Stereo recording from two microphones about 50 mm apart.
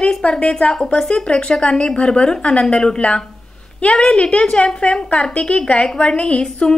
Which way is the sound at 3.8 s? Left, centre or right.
Left.